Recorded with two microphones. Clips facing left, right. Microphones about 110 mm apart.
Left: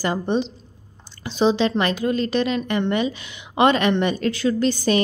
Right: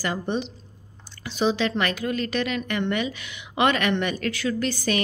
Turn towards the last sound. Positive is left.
turn(degrees=25)  # may be behind; listen again after turning